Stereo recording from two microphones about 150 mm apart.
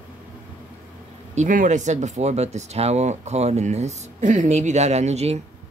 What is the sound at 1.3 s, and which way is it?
Speech, 60° right (ahead or behind).